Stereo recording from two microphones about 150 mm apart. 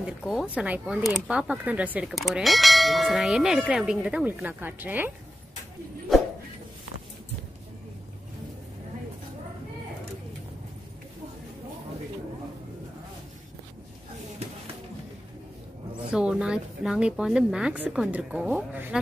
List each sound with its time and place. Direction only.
0.0 s speech: centre (ahead or behind)
14.4 s music: 45° right (ahead or behind)
16.1 s speech: 5° right (ahead or behind)